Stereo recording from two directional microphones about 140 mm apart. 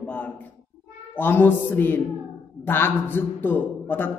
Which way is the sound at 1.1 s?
15° left (ahead or behind).